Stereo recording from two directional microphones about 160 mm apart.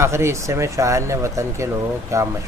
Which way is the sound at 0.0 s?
15° right (ahead or behind).